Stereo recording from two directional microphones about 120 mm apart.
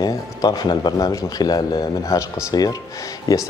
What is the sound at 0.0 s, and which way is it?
Speech, 30° left (ahead or behind).